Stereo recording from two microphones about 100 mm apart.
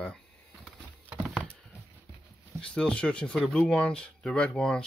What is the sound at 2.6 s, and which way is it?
Speech, 10° left (ahead or behind).